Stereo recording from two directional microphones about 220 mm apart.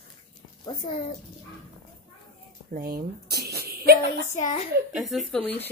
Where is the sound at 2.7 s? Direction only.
40° right (ahead or behind).